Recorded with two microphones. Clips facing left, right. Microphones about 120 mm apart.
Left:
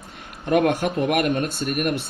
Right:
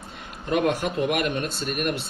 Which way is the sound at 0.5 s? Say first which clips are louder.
Left 4 dB; 55° left (ahead or behind).